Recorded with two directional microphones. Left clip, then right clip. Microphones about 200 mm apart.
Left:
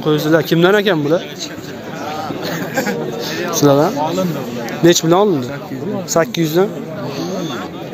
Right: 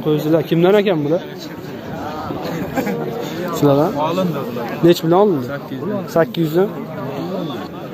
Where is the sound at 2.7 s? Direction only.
65° right (ahead or behind).